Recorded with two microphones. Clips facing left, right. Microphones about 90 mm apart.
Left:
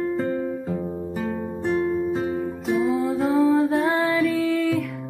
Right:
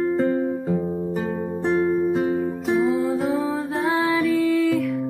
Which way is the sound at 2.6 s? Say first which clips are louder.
Right 1 dB; centre (ahead or behind).